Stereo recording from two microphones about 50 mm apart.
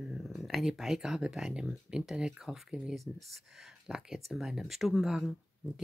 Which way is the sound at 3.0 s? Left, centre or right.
Centre.